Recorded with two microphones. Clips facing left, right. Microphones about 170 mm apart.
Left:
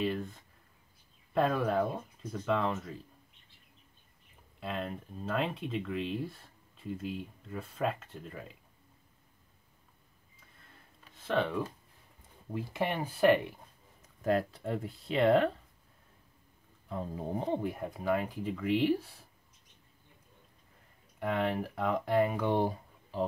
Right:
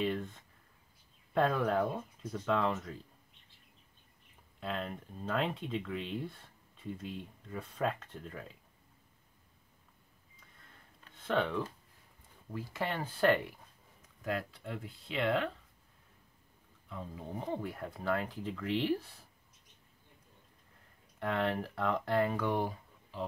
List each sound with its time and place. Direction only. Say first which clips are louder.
0.0 s a sound: left 1 dB; 5° left (ahead or behind)
1.3 s speech: left 1 dB; 5° left (ahead or behind)
4.6 s speech: left 1 dB; 5° left (ahead or behind)
11.1 s speech: left 1 dB; 5° left (ahead or behind)
12.4 s speech: left 4 dB; 20° left (ahead or behind)
14.2 s speech: left 7 dB; 40° left (ahead or behind)
16.9 s speech: left 7 dB; 40° left (ahead or behind)
17.4 s speech: left 4 dB; 25° left (ahead or behind)
21.2 s speech: left 2 dB; 10° left (ahead or behind)
22.5 s a sound: left 4 dB; 30° left (ahead or behind)